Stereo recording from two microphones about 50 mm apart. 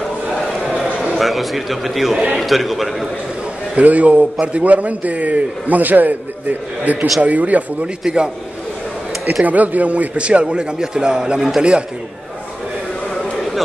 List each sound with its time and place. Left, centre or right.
0.0 s a sound: centre
1.1 s a man's voice: centre
3.7 s a man's voice: right
9.4 s a man's voice: right; by 11.8 s centre